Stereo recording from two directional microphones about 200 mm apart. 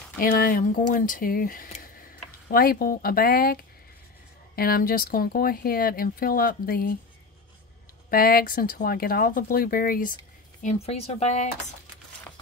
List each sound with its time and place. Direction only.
0.2 s speech: 45° left (ahead or behind)
4.6 s speech: 45° left (ahead or behind)
8.1 s speech: 45° left (ahead or behind)
10.6 s speech: 35° left (ahead or behind)